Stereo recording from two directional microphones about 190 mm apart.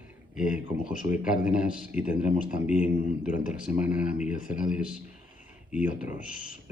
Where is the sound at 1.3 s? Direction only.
5° right (ahead or behind).